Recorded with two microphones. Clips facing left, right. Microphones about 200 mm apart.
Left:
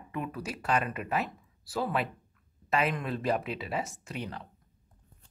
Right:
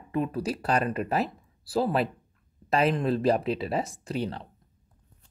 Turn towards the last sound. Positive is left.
turn(degrees=-30)  # may be behind; listen again after turning